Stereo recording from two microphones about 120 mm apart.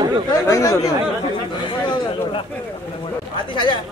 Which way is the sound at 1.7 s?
45° left (ahead or behind).